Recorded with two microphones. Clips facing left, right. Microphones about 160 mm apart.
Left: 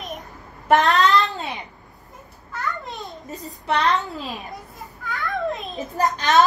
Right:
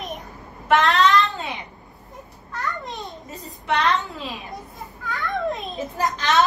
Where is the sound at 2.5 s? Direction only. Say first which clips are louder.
Even; centre (ahead or behind).